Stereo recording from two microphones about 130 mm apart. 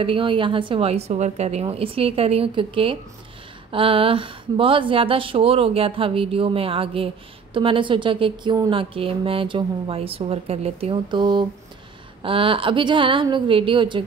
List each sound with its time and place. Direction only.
0.0 s a woman's voice: 40° right (ahead or behind)
11.1 s a woman's voice: 35° right (ahead or behind)